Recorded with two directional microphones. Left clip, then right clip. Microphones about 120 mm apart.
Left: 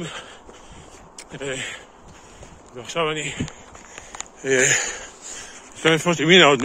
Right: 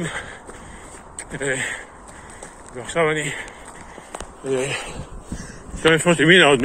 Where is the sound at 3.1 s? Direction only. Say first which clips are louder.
Right 4 dB; 40° left (ahead or behind).